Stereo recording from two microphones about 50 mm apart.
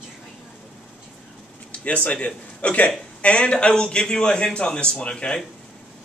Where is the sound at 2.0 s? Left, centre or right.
Left.